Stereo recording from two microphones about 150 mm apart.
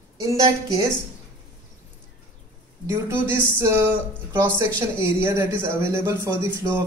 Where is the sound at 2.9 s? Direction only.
15° right (ahead or behind).